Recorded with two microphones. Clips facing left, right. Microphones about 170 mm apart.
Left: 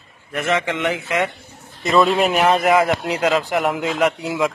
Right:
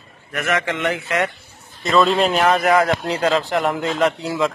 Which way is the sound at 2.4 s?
20° left (ahead or behind).